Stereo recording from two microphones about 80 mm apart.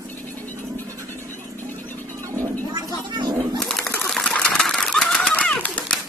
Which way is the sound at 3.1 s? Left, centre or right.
Right.